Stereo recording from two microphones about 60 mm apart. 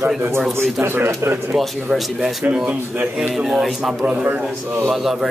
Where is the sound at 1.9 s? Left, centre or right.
Centre.